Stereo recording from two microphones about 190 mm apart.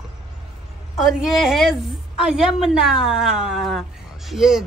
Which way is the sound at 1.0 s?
Centre (ahead or behind).